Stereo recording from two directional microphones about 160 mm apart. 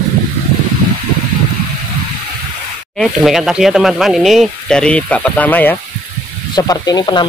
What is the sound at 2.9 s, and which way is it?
Speech, centre (ahead or behind).